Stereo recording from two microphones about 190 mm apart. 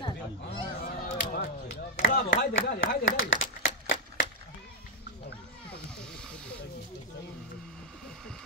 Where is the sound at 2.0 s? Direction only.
65° left (ahead or behind).